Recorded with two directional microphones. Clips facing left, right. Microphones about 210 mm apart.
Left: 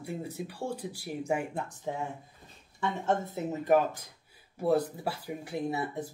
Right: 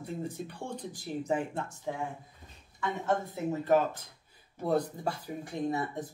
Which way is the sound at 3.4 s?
15° left (ahead or behind).